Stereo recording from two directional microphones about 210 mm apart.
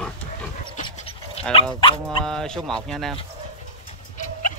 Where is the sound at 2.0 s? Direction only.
Centre (ahead or behind).